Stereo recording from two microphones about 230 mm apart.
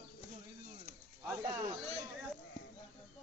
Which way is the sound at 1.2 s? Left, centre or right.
Centre.